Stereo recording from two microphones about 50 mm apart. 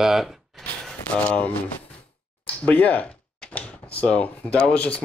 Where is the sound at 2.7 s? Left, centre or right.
Left.